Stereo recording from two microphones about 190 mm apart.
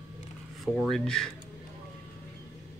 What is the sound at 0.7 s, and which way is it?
Speech, centre (ahead or behind).